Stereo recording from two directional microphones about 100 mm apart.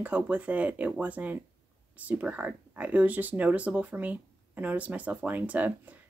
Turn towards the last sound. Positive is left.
turn(degrees=-15)  # may be behind; listen again after turning